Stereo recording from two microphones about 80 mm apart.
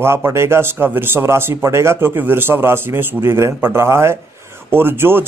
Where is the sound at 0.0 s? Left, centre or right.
Right.